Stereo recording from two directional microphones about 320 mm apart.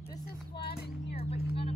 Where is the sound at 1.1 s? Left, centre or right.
Centre.